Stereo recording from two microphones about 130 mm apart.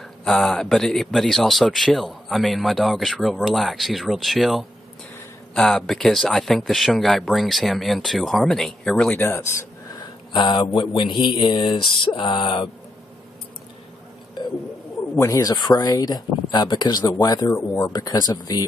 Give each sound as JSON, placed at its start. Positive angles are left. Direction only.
{"t": 0.2, "sound": "speech", "side_deg": 5}
{"t": 9.2, "sound": "speech", "side_deg": 20}
{"t": 10.3, "sound": "speech", "side_deg": 35}
{"t": 15.1, "sound": "speech", "side_deg": 25}